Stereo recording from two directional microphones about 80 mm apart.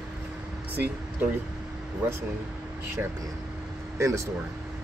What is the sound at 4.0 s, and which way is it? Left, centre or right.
Speech, right.